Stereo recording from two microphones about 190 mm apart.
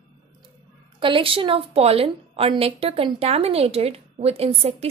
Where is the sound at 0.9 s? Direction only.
25° right (ahead or behind).